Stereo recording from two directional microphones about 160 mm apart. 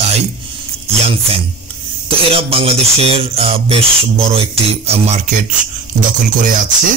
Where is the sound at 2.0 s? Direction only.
35° right (ahead or behind).